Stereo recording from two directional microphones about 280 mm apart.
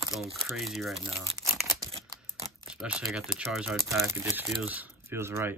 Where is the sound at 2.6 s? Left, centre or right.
Centre.